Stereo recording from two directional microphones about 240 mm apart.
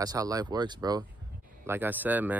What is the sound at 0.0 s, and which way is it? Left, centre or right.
Speech, centre.